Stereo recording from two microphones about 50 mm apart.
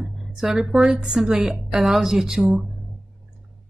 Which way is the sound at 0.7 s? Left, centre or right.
Centre.